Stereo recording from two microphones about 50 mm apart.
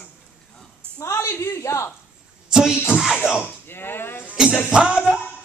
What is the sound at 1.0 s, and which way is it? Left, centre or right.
Speech, left.